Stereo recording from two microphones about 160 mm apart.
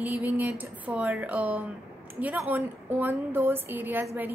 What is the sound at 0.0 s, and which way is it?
A woman's voice, 10° right (ahead or behind).